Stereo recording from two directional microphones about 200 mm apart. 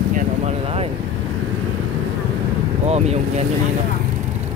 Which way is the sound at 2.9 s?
35° right (ahead or behind).